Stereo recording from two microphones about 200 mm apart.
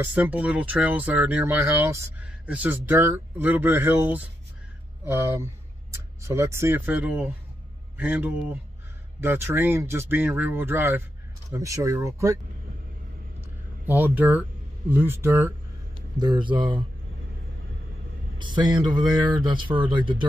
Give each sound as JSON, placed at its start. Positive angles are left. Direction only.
{"t": 0.0, "sound": "speech", "side_deg": -5}
{"t": 13.8, "sound": "speech", "side_deg": -10}
{"t": 16.2, "sound": "speech", "side_deg": -25}
{"t": 18.4, "sound": "speech", "side_deg": -20}